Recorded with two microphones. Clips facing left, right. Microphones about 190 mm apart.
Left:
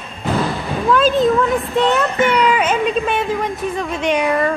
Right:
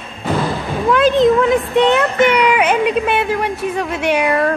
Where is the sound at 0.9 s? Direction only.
15° right (ahead or behind).